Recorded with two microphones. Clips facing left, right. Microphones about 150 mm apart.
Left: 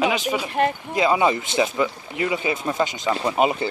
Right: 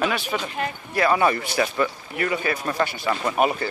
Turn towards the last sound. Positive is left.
turn(degrees=20)  # may be behind; listen again after turning